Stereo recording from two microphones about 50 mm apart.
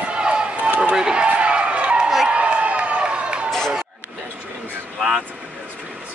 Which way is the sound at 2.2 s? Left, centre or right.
Right.